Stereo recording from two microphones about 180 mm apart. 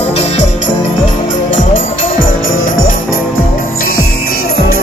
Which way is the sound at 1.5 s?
45° left (ahead or behind).